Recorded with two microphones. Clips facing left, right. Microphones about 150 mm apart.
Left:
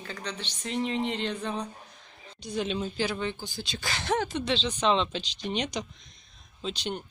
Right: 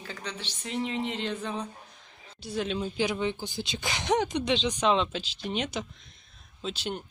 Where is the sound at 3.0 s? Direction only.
15° right (ahead or behind).